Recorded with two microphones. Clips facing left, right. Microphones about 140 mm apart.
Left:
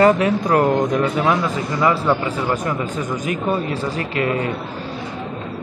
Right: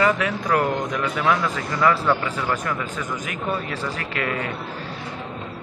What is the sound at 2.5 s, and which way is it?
A man's voice, 30° left (ahead or behind).